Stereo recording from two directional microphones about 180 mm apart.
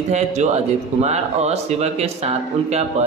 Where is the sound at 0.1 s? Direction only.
40° right (ahead or behind).